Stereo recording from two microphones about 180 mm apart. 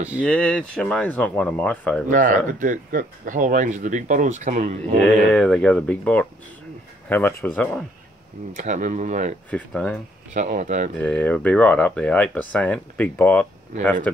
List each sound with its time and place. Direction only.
0.2 s speech: 5° left (ahead or behind)
2.0 s speech: 50° right (ahead or behind)
5.0 s speech: 5° left (ahead or behind)
8.5 s speech: 45° right (ahead or behind)
9.5 s speech: 5° left (ahead or behind)
10.3 s speech: 45° right (ahead or behind)
11.0 s speech: 10° left (ahead or behind)